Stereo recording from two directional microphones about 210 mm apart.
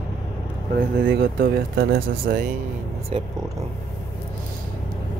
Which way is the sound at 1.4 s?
45° right (ahead or behind).